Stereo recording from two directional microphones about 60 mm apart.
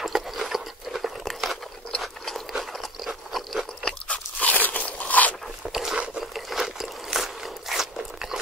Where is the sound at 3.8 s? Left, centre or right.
Left.